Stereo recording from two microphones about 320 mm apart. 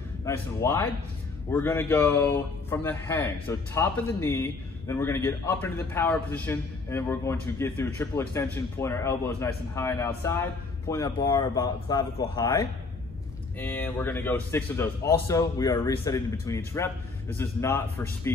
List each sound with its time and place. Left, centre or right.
0.2 s speech: centre